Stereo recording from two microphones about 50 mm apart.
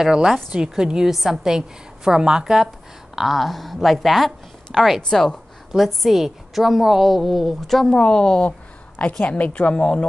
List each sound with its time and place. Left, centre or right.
0.0 s a woman's voice: centre
5.1 s a woman's voice: centre
5.7 s a woman's voice: centre
7.9 s a woman's voice: centre
8.5 s a sound: left
9.3 s a woman's voice: left